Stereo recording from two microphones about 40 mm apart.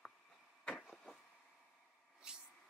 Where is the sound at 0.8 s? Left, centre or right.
Centre.